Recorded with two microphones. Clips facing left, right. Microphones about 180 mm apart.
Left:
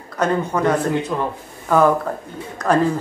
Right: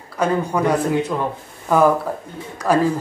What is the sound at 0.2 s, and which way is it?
Speech, 10° right (ahead or behind).